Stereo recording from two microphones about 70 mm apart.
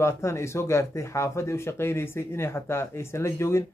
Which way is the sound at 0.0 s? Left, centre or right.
Left.